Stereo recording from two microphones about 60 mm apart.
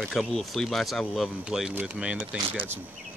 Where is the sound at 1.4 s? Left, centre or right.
Centre.